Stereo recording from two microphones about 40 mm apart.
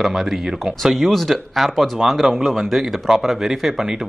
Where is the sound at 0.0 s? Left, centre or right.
Centre.